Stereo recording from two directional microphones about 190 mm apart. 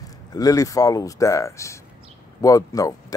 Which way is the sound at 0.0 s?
20° left (ahead or behind).